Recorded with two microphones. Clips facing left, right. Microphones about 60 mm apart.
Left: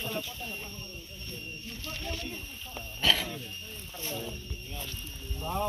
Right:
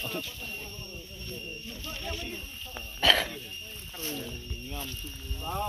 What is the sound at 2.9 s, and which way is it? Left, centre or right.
Speech, right.